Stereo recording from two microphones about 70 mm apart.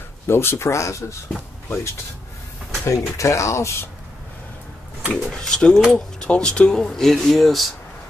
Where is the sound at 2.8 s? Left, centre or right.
Left.